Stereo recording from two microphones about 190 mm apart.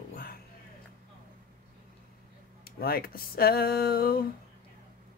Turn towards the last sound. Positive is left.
turn(degrees=50)  # may be behind; listen again after turning